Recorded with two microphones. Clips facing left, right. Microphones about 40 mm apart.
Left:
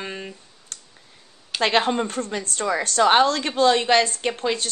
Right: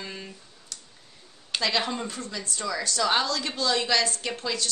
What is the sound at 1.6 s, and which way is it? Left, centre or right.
A woman's voice, left.